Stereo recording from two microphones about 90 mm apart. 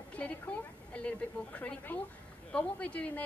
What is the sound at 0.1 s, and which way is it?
Speech, 15° left (ahead or behind).